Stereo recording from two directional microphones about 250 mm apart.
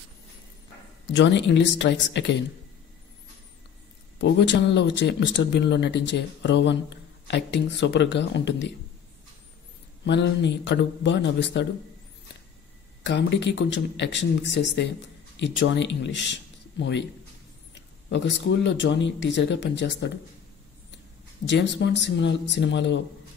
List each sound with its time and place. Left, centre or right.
1.0 s speech: left
4.2 s speech: left
10.0 s speech: left
13.0 s speech: left
21.5 s speech: left